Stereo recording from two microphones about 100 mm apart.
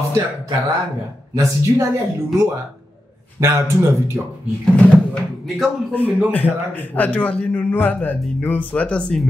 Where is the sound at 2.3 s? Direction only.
30° right (ahead or behind).